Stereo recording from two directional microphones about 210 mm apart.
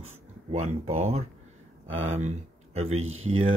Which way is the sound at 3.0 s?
75° right (ahead or behind).